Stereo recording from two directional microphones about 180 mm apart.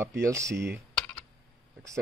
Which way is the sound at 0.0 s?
15° right (ahead or behind).